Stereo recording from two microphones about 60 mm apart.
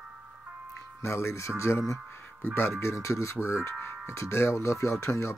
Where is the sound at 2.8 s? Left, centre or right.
Left.